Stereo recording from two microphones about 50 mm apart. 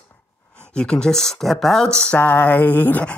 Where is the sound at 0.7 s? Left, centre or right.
Centre.